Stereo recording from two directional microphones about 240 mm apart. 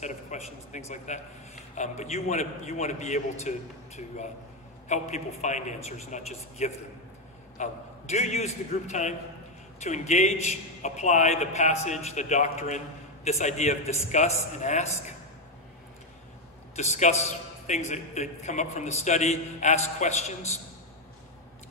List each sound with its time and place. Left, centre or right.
0.0 s a man's voice: left
16.7 s a man's voice: left